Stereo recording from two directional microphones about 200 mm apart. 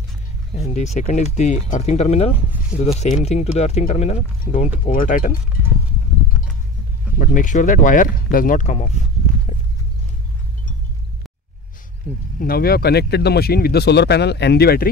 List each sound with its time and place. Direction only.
0.6 s speech: 35° left (ahead or behind)
7.2 s speech: 40° left (ahead or behind)
12.4 s speech: 50° left (ahead or behind)